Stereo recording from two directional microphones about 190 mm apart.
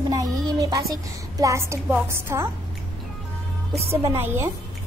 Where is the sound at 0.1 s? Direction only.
20° right (ahead or behind).